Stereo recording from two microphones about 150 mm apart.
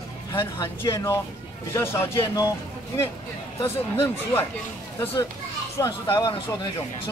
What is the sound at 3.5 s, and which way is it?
Speech, 15° left (ahead or behind).